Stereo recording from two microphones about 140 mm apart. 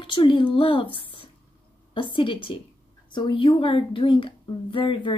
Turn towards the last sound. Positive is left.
turn(degrees=35)  # may be behind; listen again after turning